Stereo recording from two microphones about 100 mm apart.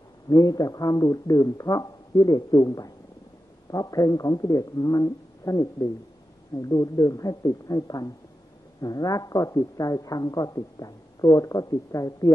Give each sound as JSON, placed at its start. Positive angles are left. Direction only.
{"t": 0.3, "sound": "a man's voice", "side_deg": 35}